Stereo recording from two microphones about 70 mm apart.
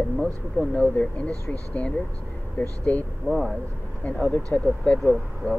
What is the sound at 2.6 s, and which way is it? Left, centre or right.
Speech, left.